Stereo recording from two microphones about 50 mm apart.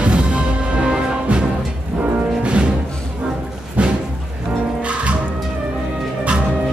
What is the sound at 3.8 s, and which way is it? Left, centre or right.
Music, right.